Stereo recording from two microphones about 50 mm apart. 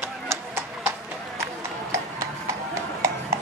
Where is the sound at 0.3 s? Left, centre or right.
Right.